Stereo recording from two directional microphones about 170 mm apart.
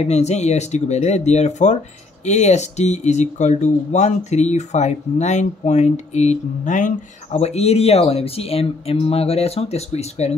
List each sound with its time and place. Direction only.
0.0 s speech: 40° left (ahead or behind)